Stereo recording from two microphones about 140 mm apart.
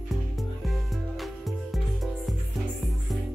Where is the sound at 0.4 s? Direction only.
Centre (ahead or behind).